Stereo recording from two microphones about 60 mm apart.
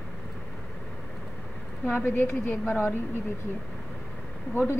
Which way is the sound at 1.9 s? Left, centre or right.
Left.